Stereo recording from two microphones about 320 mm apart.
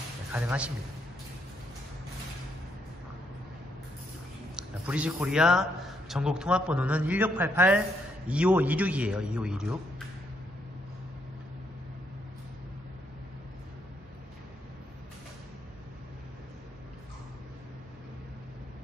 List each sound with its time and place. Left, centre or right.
0.3 s a man's voice: centre
4.6 s a man's voice: centre